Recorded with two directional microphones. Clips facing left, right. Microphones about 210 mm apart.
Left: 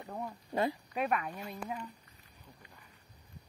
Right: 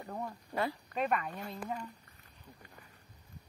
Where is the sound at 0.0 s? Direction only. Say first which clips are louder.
Even; 5° left (ahead or behind).